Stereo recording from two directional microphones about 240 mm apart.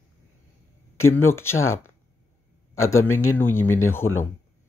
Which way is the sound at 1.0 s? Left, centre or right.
Centre.